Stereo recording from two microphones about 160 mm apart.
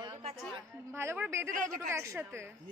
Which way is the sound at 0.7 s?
15° right (ahead or behind).